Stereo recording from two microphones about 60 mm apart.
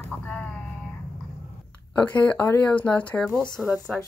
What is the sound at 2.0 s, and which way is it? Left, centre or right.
Speech, left.